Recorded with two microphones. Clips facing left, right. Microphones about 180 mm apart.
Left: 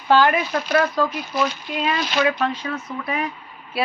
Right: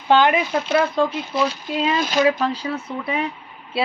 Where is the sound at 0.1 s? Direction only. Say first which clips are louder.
Right 1 dB; 20° right (ahead or behind).